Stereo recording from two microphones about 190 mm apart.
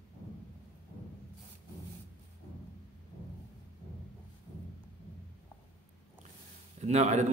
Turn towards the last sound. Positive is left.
turn(degrees=-40)  # may be behind; listen again after turning